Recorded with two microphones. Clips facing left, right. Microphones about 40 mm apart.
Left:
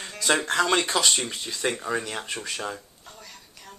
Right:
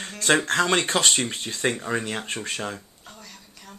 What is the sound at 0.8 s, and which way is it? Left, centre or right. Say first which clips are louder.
Speech: right 1 dB; right.